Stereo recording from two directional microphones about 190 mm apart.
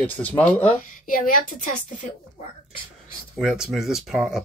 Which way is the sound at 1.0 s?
45° left (ahead or behind).